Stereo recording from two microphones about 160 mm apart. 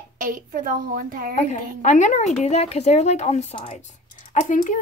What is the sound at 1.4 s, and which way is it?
A woman's voice, 50° left (ahead or behind).